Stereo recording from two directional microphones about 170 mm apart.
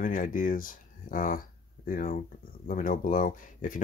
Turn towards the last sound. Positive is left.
turn(degrees=50)  # may be behind; listen again after turning